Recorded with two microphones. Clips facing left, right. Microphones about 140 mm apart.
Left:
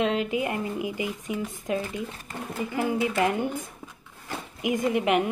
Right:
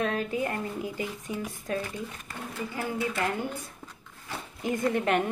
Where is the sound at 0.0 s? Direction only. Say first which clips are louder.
Left 3 dB; 15° left (ahead or behind).